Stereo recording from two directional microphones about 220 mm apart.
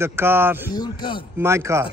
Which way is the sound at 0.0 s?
10° right (ahead or behind).